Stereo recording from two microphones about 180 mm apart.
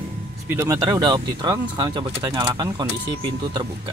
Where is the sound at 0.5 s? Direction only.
15° right (ahead or behind).